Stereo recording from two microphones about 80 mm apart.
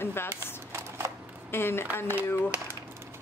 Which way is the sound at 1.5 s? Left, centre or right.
Left.